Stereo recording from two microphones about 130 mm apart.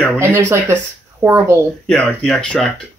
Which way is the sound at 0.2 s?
20° right (ahead or behind).